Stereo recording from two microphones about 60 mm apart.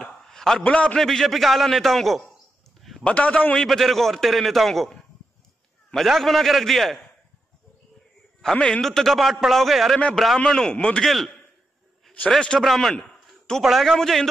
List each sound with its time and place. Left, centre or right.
0.0 s a sound: centre
0.7 s a man's voice: centre
0.9 s a man's voice: centre
3.0 s a man's voice: left
3.6 s a man's voice: centre
5.9 s a man's voice: centre
8.5 s a man's voice: centre
8.8 s a man's voice: centre
10.4 s a man's voice: centre
11.1 s a man's voice: centre
12.5 s a man's voice: centre